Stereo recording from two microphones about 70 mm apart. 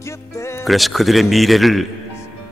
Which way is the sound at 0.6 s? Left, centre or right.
Centre.